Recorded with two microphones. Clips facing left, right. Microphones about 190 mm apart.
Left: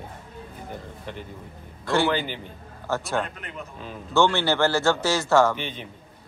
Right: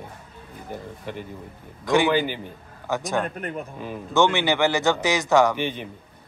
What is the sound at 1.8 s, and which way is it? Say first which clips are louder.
A man's voice: right 3 dB; 15° right (ahead or behind).